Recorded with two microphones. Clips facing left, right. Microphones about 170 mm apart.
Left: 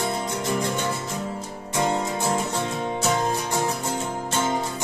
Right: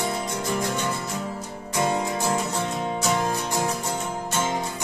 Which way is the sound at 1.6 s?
25° left (ahead or behind).